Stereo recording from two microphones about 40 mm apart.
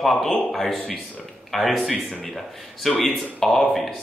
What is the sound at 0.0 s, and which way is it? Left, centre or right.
Speech, centre.